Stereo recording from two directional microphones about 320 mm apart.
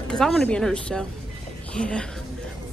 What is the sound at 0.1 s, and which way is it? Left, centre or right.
A man's voice, centre.